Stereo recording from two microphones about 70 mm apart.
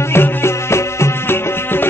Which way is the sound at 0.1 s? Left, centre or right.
Left.